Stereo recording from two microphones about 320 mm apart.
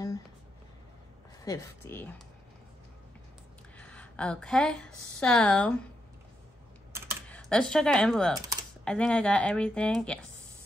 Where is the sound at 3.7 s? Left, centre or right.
Centre.